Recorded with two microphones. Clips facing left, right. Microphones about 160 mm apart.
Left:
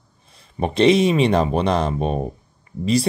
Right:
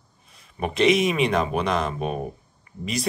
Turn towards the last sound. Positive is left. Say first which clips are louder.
# left 10 dB
turn(degrees=30)  # may be behind; listen again after turning